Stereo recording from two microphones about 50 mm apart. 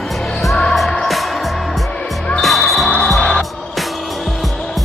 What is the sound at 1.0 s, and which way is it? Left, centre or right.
Music, centre.